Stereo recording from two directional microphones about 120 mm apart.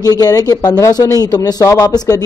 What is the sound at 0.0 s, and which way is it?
Speech, 30° left (ahead or behind).